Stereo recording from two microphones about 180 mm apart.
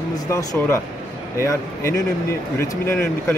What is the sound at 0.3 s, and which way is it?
Speech, 15° left (ahead or behind).